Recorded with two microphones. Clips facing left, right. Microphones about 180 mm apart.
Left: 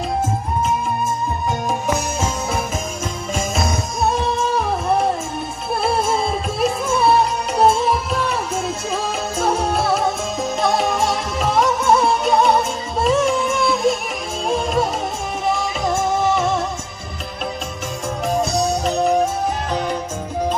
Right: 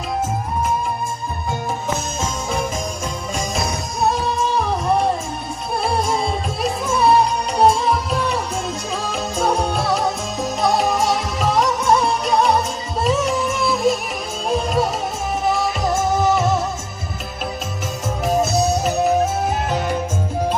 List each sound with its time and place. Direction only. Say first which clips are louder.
1.5 s music: left 1 dB; 15° left (ahead or behind)
5.8 s music: left 1 dB; 5° left (ahead or behind)
18.2 s music: right 2 dB; 5° right (ahead or behind)